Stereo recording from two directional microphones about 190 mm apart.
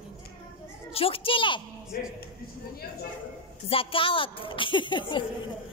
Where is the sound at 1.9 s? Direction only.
50° left (ahead or behind).